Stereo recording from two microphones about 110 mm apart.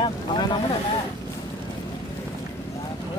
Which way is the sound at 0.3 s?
40° left (ahead or behind).